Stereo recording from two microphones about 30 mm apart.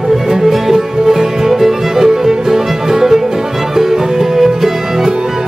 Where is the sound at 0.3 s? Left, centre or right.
Centre.